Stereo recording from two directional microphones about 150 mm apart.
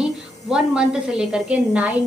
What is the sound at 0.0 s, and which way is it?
A woman's voice, 5° right (ahead or behind).